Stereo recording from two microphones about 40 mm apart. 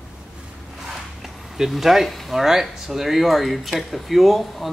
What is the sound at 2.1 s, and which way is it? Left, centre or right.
Speech, centre.